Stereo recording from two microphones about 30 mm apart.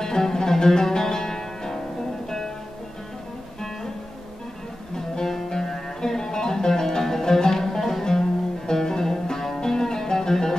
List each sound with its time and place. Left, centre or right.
0.0 s music: centre
4.9 s music: centre